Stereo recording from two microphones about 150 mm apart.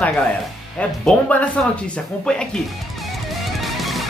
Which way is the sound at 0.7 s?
10° left (ahead or behind).